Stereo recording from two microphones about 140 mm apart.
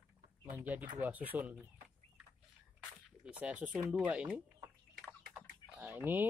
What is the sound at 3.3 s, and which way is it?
Speech, 10° right (ahead or behind).